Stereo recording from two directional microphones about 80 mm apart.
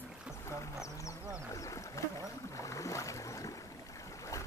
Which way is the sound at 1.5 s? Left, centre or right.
Left.